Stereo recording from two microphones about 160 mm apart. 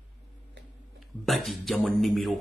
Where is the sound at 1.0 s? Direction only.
Centre (ahead or behind).